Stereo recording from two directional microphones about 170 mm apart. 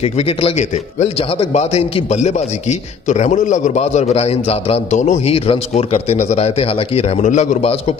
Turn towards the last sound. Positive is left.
turn(degrees=40)  # may be behind; listen again after turning